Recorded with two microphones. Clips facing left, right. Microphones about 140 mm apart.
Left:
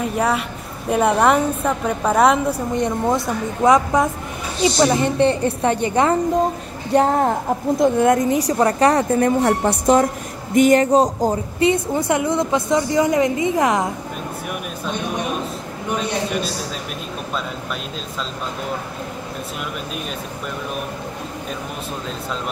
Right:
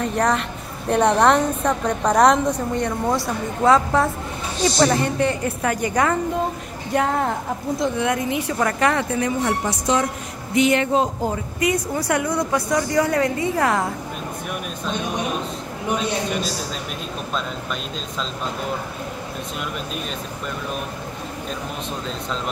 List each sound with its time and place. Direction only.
0.0 s a woman's voice: 5° left (ahead or behind)
2.7 s a woman's voice: 20° left (ahead or behind)
5.0 s a woman's voice: 30° left (ahead or behind)
7.8 s speech: 45° left (ahead or behind)
11.7 s a woman's voice: 25° left (ahead or behind)